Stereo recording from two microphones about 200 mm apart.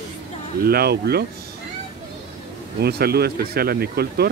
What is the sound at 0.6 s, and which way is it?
Speech, 50° right (ahead or behind).